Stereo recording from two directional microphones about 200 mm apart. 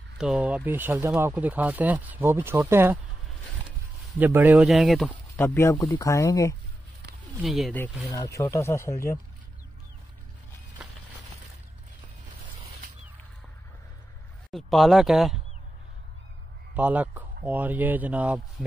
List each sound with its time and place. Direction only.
0.2 s speech: 5° right (ahead or behind)
4.2 s speech: 10° right (ahead or behind); by 6.5 s 15° left (ahead or behind)
7.4 s speech: centre (ahead or behind)
8.1 s speech: 15° left (ahead or behind)
14.5 s speech: centre (ahead or behind)
16.7 s speech: 10° right (ahead or behind)